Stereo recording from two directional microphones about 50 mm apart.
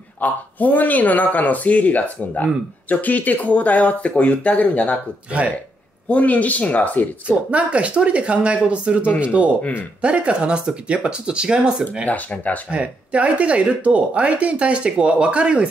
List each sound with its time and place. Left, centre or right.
0.2 s speech: left
6.0 s speech: left
7.2 s speech: right
12.1 s speech: left
12.7 s speech: right